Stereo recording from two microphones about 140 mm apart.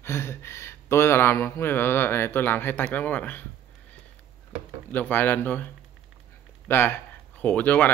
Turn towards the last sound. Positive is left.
turn(degrees=10)  # may be behind; listen again after turning